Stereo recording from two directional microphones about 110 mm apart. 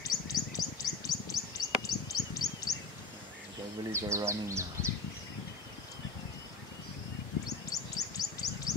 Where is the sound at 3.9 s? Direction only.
25° right (ahead or behind).